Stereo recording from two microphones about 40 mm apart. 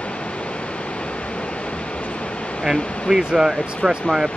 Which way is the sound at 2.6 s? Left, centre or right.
Centre.